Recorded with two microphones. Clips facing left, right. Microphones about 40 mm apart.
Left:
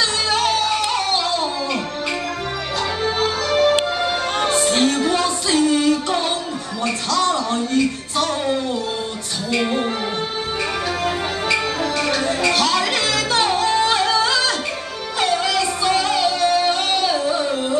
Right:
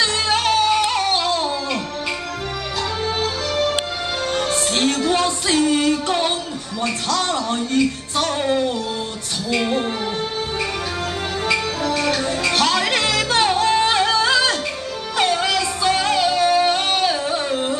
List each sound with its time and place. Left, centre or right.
0.0 s music: centre
1.1 s music: centre
3.0 s music: centre
5.1 s music: centre
7.2 s a sound: centre
9.5 s music: centre
11.9 s music: centre
12.5 s music: centre
13.4 s music: centre
15.1 s music: centre